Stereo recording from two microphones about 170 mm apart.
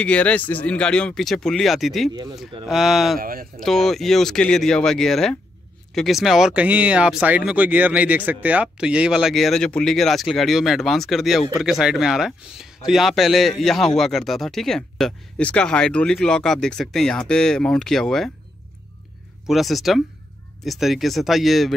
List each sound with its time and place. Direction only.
0.0 s speech: 5° left (ahead or behind)
3.2 s speech: 55° right (ahead or behind)
3.5 s speech: centre (ahead or behind)
19.4 s speech: centre (ahead or behind)